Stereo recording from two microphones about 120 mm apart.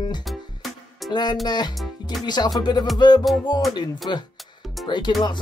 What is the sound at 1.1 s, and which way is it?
Speech, 40° left (ahead or behind).